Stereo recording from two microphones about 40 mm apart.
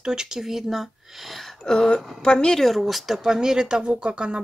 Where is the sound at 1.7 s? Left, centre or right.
Centre.